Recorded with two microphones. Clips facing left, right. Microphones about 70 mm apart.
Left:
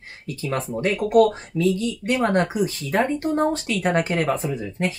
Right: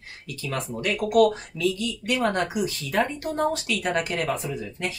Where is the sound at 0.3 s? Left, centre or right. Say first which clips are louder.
Left 5 dB; left.